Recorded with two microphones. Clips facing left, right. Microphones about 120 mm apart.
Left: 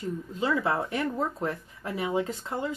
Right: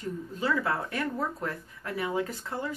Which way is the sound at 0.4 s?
20° left (ahead or behind).